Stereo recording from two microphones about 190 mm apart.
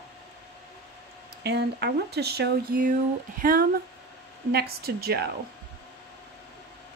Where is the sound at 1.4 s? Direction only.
60° right (ahead or behind).